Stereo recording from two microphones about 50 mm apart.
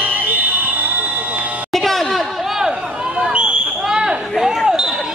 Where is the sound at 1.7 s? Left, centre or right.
Centre.